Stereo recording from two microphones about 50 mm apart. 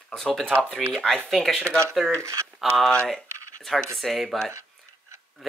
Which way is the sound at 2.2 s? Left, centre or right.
Right.